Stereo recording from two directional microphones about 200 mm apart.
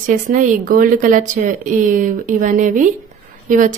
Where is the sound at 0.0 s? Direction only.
40° right (ahead or behind).